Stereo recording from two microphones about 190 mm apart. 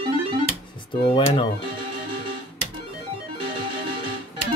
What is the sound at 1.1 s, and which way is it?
Speech, 25° left (ahead or behind).